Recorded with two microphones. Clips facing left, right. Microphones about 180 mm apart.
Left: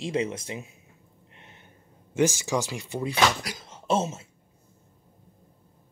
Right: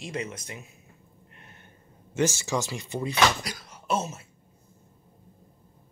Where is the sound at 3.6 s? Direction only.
25° left (ahead or behind).